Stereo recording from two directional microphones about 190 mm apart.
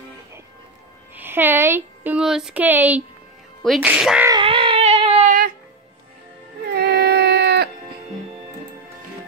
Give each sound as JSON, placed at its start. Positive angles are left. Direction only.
{"t": 1.1, "sound": "speech", "side_deg": -10}
{"t": 4.3, "sound": "baby cry", "side_deg": -25}
{"t": 6.7, "sound": "a sound", "side_deg": -55}